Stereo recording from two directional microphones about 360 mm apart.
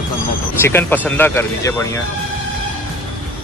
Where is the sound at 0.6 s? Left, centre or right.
Centre.